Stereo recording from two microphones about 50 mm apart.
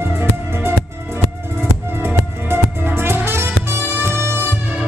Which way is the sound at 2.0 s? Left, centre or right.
Right.